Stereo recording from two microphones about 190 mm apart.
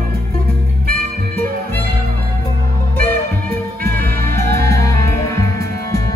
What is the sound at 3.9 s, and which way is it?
Music, 10° left (ahead or behind).